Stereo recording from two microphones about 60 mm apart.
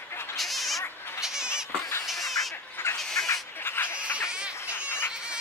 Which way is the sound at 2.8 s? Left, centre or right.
Left.